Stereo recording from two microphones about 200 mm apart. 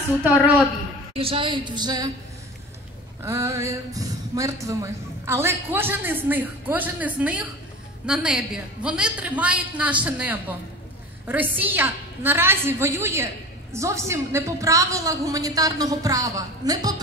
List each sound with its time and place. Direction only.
0.2 s speech: 5° right (ahead or behind)
1.1 s a woman's voice: 30° right (ahead or behind)
3.2 s a woman's voice: 15° right (ahead or behind)